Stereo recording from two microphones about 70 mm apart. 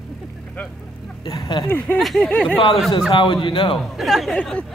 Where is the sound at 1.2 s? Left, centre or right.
Left.